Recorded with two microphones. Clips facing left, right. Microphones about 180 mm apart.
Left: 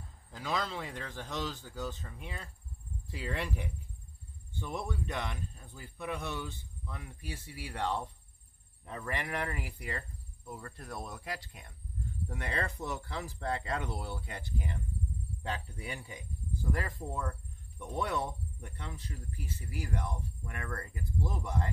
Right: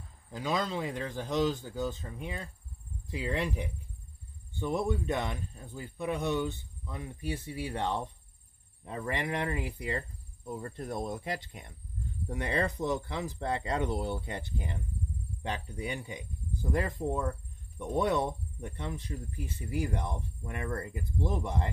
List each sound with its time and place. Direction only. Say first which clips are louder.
0.3 s speech: right 4 dB; 20° right (ahead or behind)
4.6 s speech: right 7 dB; 25° right (ahead or behind)